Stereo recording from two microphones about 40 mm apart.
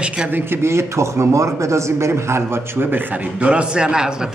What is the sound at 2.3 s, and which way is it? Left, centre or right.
Speech, right.